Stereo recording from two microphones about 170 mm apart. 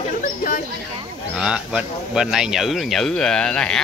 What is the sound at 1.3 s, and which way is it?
Speech, 5° right (ahead or behind).